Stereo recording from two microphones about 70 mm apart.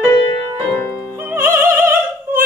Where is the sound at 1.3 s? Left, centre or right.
Right.